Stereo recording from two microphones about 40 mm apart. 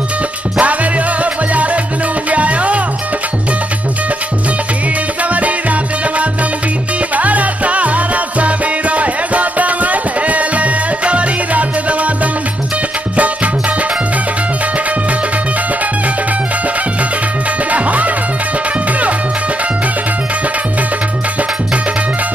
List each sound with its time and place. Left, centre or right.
0.6 s music: right
5.3 s music: right
13.1 s music: right
17.6 s music: right